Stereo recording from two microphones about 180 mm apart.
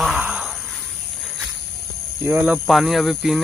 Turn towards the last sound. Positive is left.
turn(degrees=0)  # may be behind; listen again after turning